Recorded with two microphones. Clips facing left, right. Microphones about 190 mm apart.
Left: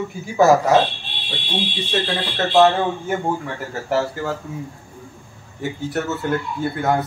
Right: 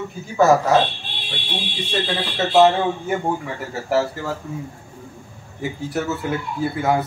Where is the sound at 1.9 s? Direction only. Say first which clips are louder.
Even; centre (ahead or behind).